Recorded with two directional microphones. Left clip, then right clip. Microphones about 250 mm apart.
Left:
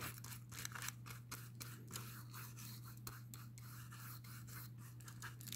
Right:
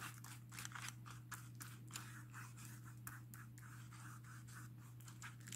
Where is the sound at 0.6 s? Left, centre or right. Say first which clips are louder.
Left 3 dB; centre.